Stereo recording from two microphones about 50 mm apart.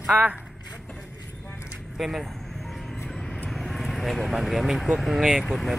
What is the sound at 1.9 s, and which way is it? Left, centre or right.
Speech, centre.